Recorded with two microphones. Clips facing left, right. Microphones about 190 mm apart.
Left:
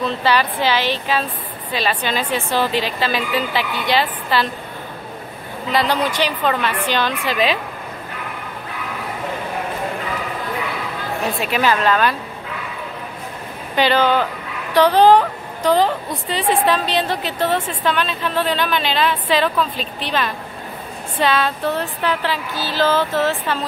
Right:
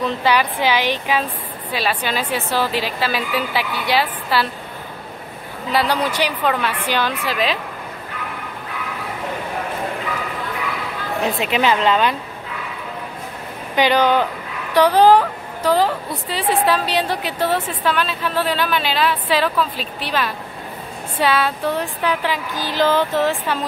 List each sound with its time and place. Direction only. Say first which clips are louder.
0.0 s a woman's voice: even; 15° right (ahead or behind)
5.7 s a woman's voice: even; 10° right (ahead or behind)
11.3 s a woman's voice: even; 20° right (ahead or behind)
13.7 s a woman's voice: even; 15° right (ahead or behind)